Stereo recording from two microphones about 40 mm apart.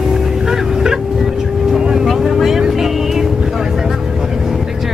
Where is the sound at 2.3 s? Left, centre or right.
Centre.